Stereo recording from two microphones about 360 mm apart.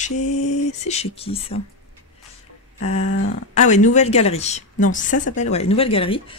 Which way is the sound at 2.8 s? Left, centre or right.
Left.